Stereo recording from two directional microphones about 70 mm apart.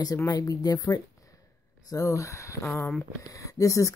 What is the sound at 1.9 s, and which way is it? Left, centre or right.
Speech, left.